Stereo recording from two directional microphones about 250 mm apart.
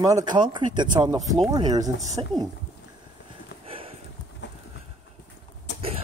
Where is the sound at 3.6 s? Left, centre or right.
Right.